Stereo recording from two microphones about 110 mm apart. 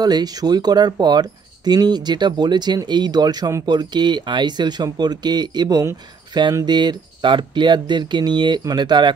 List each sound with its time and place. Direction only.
0.0 s speech: 35° right (ahead or behind)